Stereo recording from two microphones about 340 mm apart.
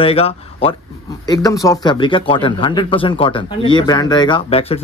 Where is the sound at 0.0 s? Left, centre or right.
Centre.